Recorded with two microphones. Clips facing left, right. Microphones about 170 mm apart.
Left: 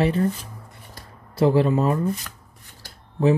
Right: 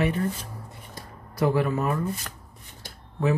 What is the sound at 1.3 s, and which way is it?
Speech, 30° left (ahead or behind).